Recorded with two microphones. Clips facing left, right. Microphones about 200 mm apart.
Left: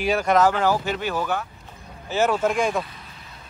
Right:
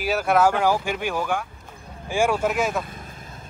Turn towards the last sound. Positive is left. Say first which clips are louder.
# right 5 dB
turn(degrees=-50)  # may be behind; listen again after turning